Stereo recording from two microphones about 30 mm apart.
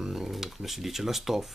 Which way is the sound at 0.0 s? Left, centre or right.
Centre.